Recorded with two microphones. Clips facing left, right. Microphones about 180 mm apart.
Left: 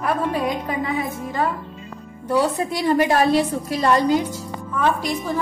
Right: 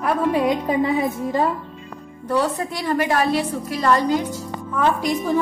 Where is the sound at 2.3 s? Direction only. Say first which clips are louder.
Left 1 dB; 10° left (ahead or behind).